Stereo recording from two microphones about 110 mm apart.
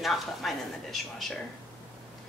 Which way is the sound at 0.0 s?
Centre (ahead or behind).